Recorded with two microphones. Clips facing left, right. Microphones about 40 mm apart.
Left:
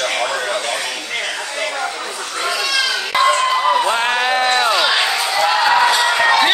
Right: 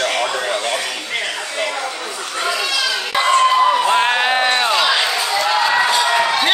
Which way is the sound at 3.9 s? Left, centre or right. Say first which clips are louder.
Right 1 dB; centre.